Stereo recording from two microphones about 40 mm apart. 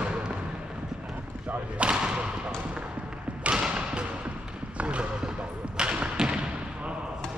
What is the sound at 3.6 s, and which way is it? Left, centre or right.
Basketball bounce, right.